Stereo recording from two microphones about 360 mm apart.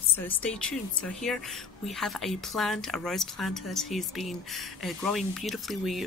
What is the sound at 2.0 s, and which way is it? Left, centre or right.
Speech, centre.